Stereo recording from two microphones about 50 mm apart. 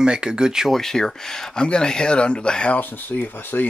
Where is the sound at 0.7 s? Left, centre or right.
Centre.